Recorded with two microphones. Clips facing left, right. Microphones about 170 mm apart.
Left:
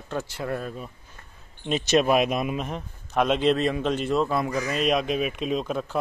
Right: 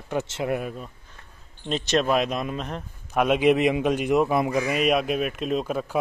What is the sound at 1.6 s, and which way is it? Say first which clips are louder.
Speech: left 2 dB; 5° left (ahead or behind).